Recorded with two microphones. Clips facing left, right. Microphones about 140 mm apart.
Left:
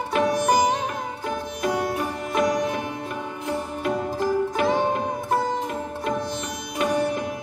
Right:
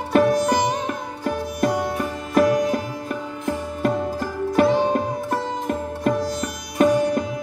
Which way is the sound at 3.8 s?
45° right (ahead or behind).